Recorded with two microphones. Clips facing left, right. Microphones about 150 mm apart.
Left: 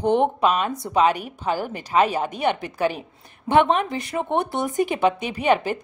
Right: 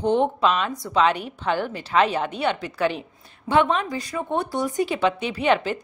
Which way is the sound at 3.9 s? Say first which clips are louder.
Left 2 dB; 25° left (ahead or behind).